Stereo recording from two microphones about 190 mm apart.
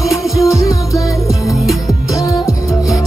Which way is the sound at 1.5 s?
Centre (ahead or behind).